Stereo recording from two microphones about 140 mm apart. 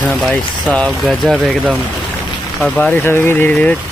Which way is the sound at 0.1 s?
Centre (ahead or behind).